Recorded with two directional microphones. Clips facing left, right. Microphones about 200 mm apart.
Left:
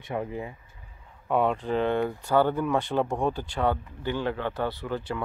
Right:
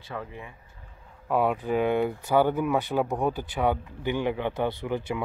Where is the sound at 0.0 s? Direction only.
20° left (ahead or behind).